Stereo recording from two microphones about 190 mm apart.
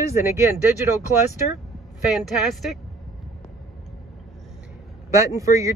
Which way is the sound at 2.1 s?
Centre (ahead or behind).